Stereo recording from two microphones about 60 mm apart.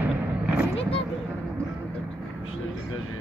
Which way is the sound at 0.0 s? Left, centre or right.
Right.